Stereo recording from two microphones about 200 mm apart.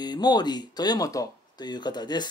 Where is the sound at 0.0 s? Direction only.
20° left (ahead or behind).